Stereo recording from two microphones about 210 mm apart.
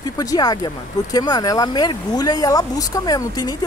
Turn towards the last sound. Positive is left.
turn(degrees=20)  # may be behind; listen again after turning